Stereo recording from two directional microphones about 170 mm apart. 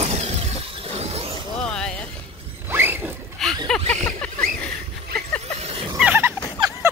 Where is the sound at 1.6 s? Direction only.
5° left (ahead or behind).